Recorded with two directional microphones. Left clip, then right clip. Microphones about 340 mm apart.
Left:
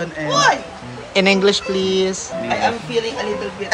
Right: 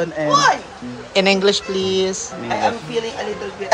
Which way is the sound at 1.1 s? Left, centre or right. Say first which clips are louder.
Left 1 dB; centre.